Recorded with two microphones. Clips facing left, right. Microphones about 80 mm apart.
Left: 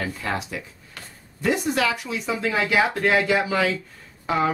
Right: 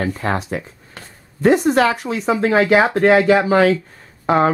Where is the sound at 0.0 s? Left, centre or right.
Right.